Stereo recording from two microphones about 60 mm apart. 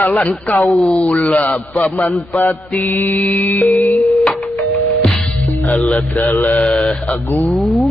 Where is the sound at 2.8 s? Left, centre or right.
Left.